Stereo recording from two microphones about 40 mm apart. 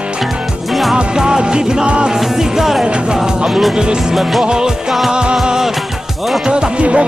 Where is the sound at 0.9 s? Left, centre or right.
Centre.